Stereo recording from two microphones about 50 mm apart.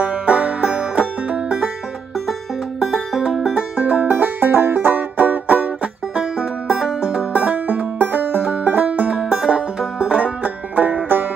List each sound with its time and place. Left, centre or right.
0.0 s banjo: right
2.8 s music: centre
3.7 s music: right
4.1 s music: right
6.7 s music: centre
7.0 s music: right
9.2 s music: centre; by 11.2 s right